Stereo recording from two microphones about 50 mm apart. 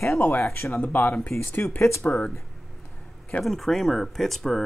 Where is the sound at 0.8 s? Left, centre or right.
Left.